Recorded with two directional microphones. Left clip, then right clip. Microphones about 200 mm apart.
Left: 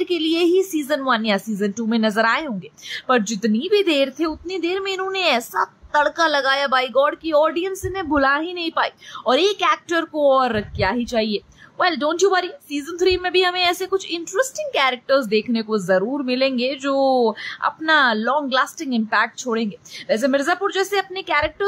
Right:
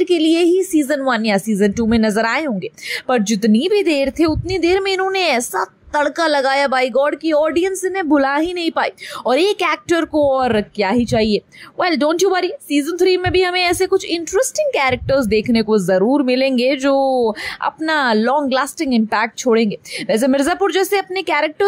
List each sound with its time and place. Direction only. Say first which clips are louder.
0.0 s a woman's voice: right 5 dB; 15° right (ahead or behind)